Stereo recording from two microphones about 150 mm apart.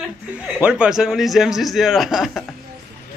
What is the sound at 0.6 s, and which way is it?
A man's voice, 5° right (ahead or behind).